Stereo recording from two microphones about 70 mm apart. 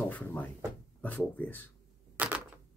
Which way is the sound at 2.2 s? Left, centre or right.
Right.